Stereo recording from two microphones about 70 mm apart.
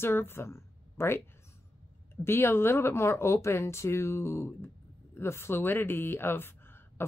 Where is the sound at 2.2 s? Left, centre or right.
Left.